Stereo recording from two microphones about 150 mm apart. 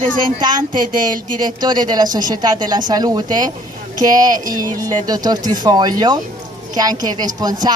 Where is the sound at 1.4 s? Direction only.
30° right (ahead or behind).